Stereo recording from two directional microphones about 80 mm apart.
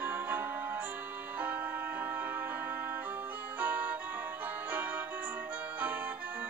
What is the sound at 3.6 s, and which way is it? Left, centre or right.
Music, right.